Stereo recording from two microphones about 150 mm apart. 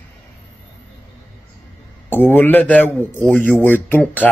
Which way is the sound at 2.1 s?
15° left (ahead or behind).